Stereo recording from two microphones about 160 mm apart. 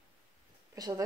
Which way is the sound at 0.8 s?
25° right (ahead or behind).